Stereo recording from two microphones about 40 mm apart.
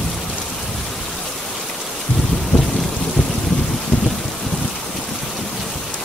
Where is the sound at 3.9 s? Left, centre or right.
Left.